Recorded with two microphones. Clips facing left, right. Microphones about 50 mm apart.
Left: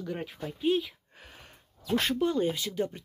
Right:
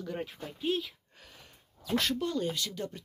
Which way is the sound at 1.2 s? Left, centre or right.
Left.